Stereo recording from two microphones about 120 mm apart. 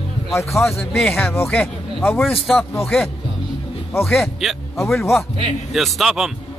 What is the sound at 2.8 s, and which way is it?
A man's voice, centre (ahead or behind).